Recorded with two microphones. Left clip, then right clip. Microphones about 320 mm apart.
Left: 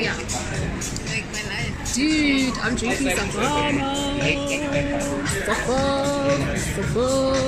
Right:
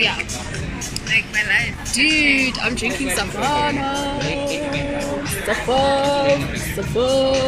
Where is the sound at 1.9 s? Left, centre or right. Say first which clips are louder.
Right 5 dB; centre.